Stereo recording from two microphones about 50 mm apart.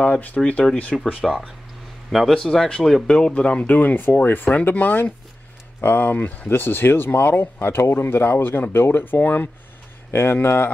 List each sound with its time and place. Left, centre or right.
0.0 s speech: left
1.0 s a man's voice: centre
3.7 s speech: left
10.1 s speech: left